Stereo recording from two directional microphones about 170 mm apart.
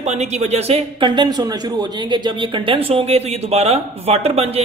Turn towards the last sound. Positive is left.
turn(degrees=-35)  # may be behind; listen again after turning